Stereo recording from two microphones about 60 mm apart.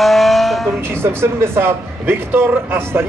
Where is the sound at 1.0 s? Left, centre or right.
Right.